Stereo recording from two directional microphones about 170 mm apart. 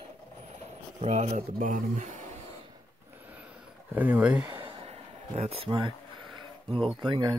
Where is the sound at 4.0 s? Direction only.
10° right (ahead or behind).